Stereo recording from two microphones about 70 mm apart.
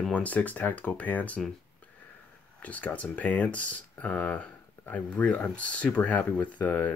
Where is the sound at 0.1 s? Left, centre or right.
Left.